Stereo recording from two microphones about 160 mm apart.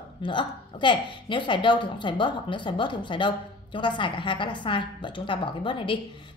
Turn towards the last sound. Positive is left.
turn(degrees=30)  # may be behind; listen again after turning